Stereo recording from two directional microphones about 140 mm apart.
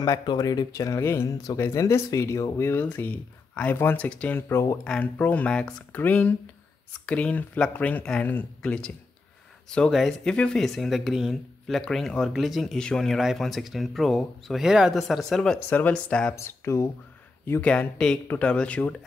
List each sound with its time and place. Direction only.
0.0 s speech: 30° left (ahead or behind)
4.8 s speech: 10° left (ahead or behind)
16.3 s speech: 20° left (ahead or behind)